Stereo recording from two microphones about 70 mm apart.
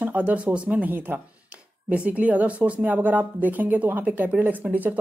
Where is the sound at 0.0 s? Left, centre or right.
Right.